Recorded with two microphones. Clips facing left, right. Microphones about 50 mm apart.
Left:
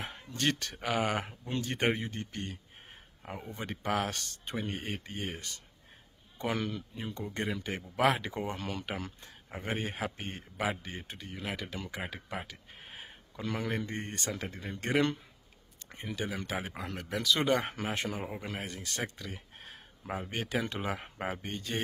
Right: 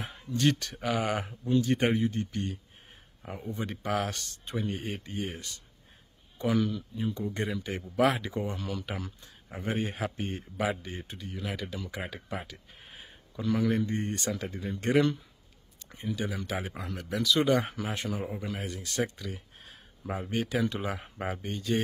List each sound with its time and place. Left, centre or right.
0.3 s speech: left
3.2 s a sound: centre
3.4 s speech: left
9.5 s speech: left
16.2 s speech: left